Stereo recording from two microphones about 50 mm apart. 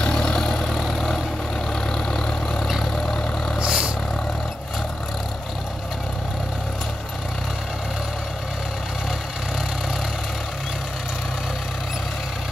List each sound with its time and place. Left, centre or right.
0.0 s vehicle: centre
3.5 s vehicle: right